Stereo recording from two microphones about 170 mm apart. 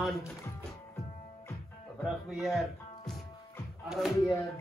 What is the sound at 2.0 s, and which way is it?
Speech, centre (ahead or behind).